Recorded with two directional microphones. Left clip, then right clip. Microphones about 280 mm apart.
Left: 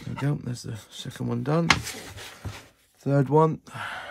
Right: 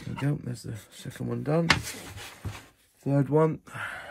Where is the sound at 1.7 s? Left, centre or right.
Centre.